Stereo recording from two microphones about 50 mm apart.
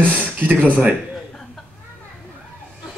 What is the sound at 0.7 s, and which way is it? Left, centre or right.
Speech, right.